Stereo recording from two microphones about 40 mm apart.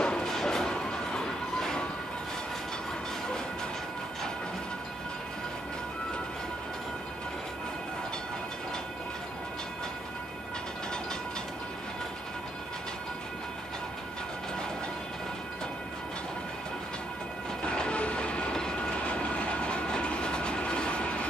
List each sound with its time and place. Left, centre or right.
0.0 s music: left
0.3 s a sound: centre
17.6 s train: left
18.5 s train: centre
18.8 s train: left